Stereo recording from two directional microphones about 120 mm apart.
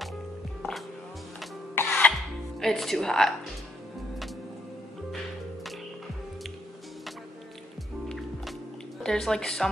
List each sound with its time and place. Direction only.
1.8 s music: 15° left (ahead or behind)
2.6 s speech: 5° left (ahead or behind)
5.1 s music: centre (ahead or behind)
9.0 s speech: 5° left (ahead or behind)